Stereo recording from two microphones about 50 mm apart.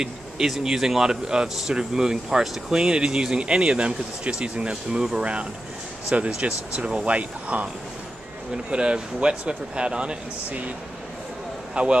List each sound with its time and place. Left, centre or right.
0.0 s speech: centre; by 10.7 s right
11.7 s speech: right